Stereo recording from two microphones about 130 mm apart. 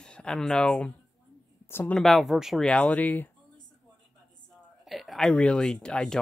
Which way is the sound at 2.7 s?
10° left (ahead or behind).